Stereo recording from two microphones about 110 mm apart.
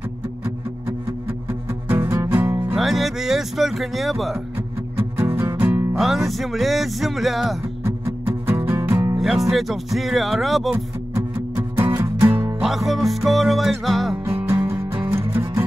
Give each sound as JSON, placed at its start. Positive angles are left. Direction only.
{"t": 1.9, "sound": "music", "side_deg": -20}
{"t": 2.3, "sound": "music", "side_deg": -30}
{"t": 2.7, "sound": "speech", "side_deg": 0}
{"t": 4.9, "sound": "music", "side_deg": -20}
{"t": 5.9, "sound": "speech", "side_deg": 0}
{"t": 8.5, "sound": "music", "side_deg": -20}
{"t": 9.2, "sound": "speech", "side_deg": 0}
{"t": 11.1, "sound": "music", "side_deg": -15}
{"t": 12.2, "sound": "music", "side_deg": -50}
{"t": 12.5, "sound": "speech", "side_deg": 0}
{"t": 14.2, "sound": "music", "side_deg": -20}